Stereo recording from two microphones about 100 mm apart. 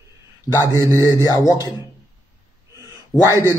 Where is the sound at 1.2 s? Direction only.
35° left (ahead or behind).